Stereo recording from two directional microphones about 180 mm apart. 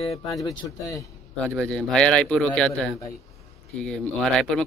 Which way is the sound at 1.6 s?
5° left (ahead or behind).